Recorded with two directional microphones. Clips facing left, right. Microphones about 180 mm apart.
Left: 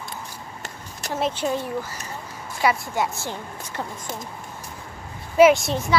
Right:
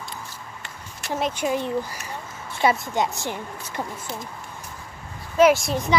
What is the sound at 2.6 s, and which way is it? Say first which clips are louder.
Speech: right 1 dB; 25° right (ahead or behind).